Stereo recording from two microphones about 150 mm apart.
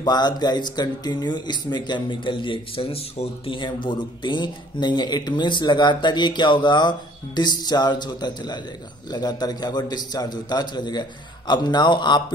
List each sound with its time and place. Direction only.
0.0 s speech: 30° left (ahead or behind)